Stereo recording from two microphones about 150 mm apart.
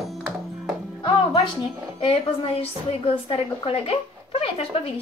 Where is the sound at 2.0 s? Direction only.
40° left (ahead or behind).